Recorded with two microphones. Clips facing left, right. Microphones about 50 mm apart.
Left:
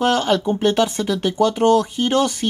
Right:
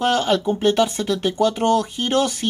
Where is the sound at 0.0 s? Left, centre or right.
Centre.